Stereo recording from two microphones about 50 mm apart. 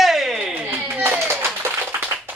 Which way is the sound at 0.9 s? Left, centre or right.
Right.